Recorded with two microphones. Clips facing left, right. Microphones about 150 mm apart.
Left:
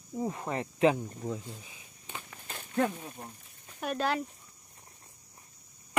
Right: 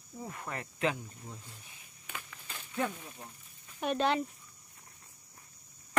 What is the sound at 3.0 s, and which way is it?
Speech, 40° left (ahead or behind).